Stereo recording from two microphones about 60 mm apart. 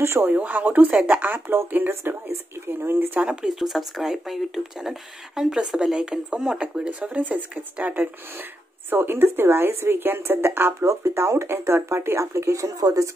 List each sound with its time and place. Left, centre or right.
0.0 s speech: right
0.3 s speech: right
3.4 s speech: centre; by 10.9 s right
10.9 s speech: right